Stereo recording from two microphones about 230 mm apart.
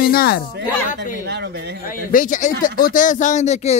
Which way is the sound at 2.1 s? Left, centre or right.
Left.